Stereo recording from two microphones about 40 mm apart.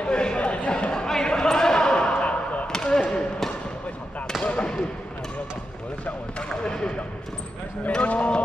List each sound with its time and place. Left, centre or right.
0.0 s a sound: left
1.0 s basketball bounce: centre
2.2 s basketball bounce: left
2.7 s a sound: centre
4.4 s basketball bounce: left
6.6 s basketball bounce: left
8.0 s speech: left